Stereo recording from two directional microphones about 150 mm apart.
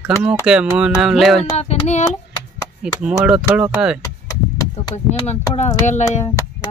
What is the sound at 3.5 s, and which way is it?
Speech, 10° right (ahead or behind).